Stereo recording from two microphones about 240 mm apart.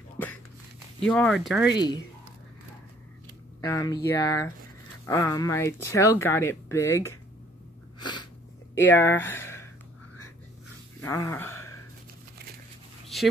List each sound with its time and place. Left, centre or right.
1.0 s speech: centre
1.7 s speech: centre
3.6 s speech: centre
8.0 s sneeze: centre
8.7 s speech: centre
11.0 s a sound: centre